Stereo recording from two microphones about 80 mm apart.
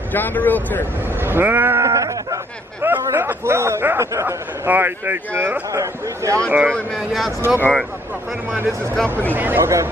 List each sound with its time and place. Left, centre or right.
0.1 s speech: left
1.2 s speech: right
1.9 s a sound: right
2.8 s speech: right
4.6 s speech: right
5.7 s speech: right
7.0 s speech: centre
7.4 s speech: right